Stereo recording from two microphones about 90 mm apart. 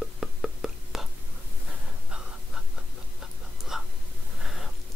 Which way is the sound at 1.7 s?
10° right (ahead or behind).